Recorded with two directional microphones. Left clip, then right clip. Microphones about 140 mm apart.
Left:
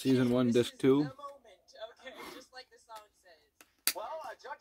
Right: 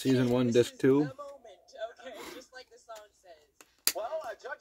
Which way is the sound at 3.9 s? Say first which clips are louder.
Right 5 dB; 35° left (ahead or behind).